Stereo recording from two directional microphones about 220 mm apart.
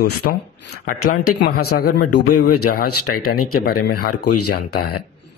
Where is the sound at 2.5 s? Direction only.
90° left.